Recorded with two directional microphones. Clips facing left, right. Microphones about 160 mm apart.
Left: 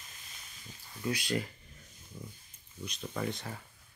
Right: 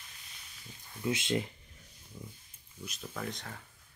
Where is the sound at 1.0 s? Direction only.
20° right (ahead or behind).